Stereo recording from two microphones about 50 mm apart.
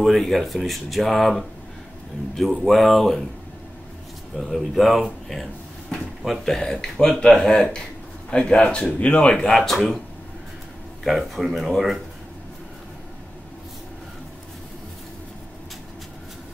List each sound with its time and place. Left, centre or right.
0.0 s speech: centre
2.6 s speech: centre
4.4 s speech: centre
6.2 s speech: centre; by 9.5 s left
9.5 s speech: centre
11.1 s speech: centre